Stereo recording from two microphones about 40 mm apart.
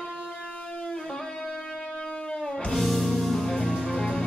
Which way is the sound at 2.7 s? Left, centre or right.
Centre.